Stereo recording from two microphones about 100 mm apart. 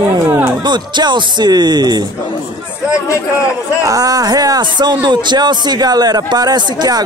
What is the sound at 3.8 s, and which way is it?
Speech, 40° right (ahead or behind).